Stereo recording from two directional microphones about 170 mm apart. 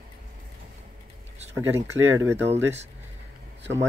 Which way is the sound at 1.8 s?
15° right (ahead or behind).